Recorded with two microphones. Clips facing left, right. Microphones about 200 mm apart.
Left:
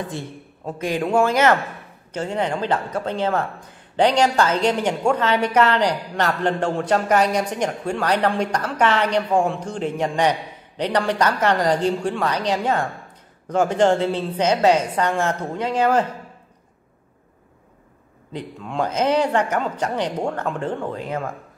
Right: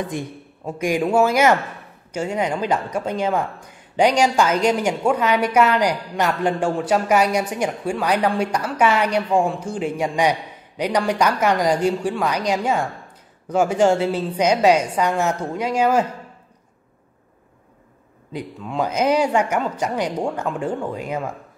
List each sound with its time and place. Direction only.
0.7 s a woman's voice: 10° right (ahead or behind)
18.3 s a woman's voice: 5° right (ahead or behind)